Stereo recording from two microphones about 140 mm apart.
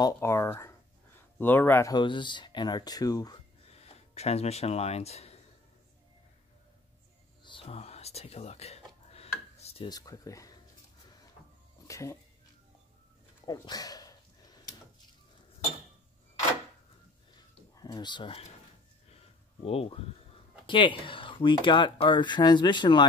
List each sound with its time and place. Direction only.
0.0 s a sound: 20° left (ahead or behind)
1.4 s speech: 15° left (ahead or behind)
1.9 s speech: 35° left (ahead or behind)
3.7 s speech: 50° left (ahead or behind)
7.4 s whispering: 40° left (ahead or behind)
9.8 s speech: 25° left (ahead or behind)
11.9 s music: 20° left (ahead or behind)
13.5 s a sound: 30° left (ahead or behind)
17.7 s speech: 30° left (ahead or behind)
19.6 s speech: 45° left (ahead or behind)